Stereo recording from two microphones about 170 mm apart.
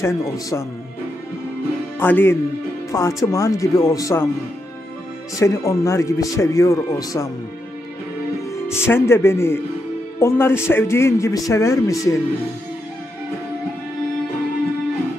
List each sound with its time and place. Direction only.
0.0 s a man's voice: 15° left (ahead or behind)
2.0 s speech: 10° left (ahead or behind)
5.4 s speech: 20° left (ahead or behind)
8.5 s a man's voice: 15° left (ahead or behind)